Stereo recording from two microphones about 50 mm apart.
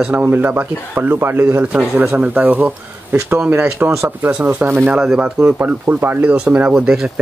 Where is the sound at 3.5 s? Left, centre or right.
Right.